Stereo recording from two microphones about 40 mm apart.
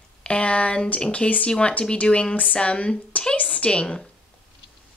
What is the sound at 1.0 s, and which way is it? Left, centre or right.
Speech, left.